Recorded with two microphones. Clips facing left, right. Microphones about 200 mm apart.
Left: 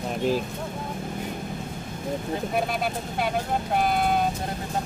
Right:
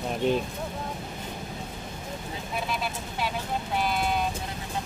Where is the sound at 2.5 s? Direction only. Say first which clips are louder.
Left 3 dB; 50° left (ahead or behind).